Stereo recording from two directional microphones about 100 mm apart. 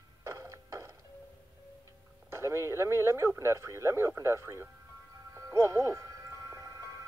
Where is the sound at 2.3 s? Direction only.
30° right (ahead or behind).